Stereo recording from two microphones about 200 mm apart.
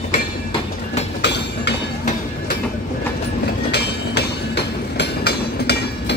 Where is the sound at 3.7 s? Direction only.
55° left (ahead or behind).